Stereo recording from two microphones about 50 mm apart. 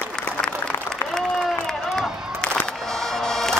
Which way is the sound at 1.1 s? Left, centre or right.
Centre.